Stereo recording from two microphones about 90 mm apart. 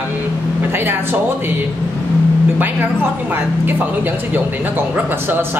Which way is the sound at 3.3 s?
20° right (ahead or behind).